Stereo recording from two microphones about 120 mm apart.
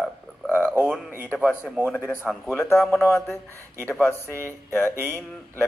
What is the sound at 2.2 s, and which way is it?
Speech, 5° left (ahead or behind).